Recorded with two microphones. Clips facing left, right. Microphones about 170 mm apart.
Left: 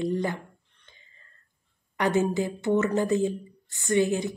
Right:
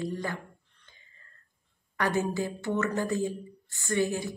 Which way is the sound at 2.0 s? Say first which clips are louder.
Left 4 dB; 20° left (ahead or behind).